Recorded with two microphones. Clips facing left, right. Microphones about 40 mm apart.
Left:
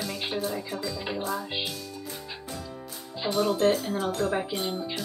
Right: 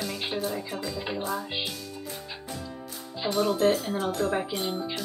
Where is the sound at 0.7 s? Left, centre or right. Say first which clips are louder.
Left 1 dB; right.